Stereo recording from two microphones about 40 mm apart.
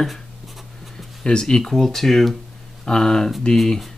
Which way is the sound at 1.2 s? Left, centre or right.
Centre.